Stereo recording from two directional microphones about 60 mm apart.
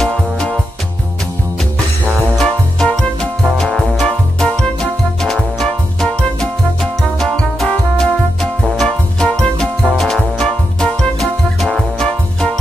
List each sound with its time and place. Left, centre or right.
0.0 s music: centre
2.4 s music: centre